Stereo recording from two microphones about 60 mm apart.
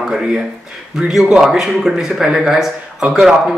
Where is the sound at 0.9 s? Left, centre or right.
Centre.